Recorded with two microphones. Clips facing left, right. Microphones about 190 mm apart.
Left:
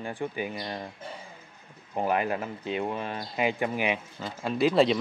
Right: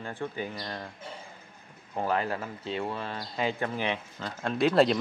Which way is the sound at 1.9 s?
15° left (ahead or behind).